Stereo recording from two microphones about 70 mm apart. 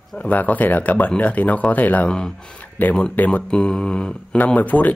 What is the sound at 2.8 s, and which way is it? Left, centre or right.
Speech, left.